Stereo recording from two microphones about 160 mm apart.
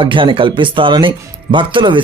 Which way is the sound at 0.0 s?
30° right (ahead or behind).